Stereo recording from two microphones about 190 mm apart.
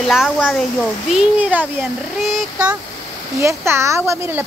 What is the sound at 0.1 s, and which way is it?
Speech, centre (ahead or behind).